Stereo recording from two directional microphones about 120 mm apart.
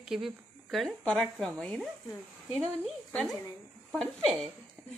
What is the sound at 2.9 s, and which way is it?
A woman's voice, 5° left (ahead or behind).